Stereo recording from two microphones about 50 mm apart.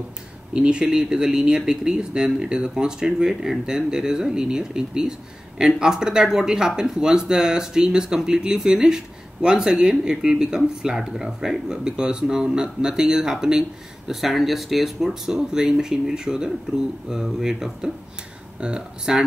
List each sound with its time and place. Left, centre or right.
0.5 s speech: centre